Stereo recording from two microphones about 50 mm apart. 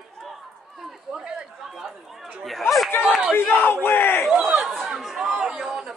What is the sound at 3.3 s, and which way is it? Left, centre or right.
Battle cry, left.